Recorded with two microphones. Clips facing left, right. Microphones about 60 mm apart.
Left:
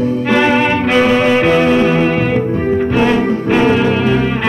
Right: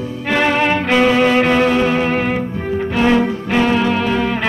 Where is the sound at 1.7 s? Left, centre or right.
Left.